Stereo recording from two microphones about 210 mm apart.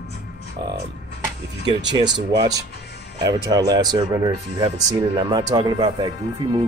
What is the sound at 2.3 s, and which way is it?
Speech, 20° right (ahead or behind).